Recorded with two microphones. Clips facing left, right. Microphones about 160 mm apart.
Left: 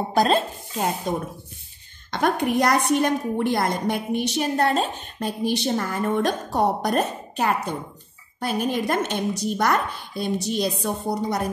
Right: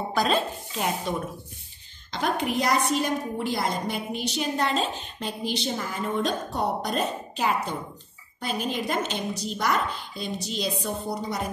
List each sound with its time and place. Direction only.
0.1 s speech: 40° left (ahead or behind)
2.0 s a woman's voice: 55° left (ahead or behind)